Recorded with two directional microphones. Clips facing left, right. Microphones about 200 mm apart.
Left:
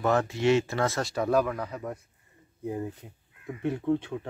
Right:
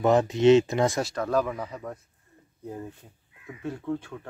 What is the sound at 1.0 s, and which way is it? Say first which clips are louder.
Speech: left 1 dB; 10° left (ahead or behind).